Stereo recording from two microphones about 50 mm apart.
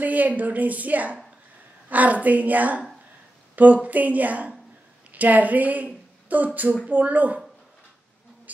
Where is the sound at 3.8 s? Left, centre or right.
Right.